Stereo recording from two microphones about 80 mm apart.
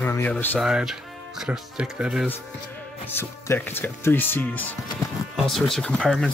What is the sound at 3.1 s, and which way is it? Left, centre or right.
Speech, left.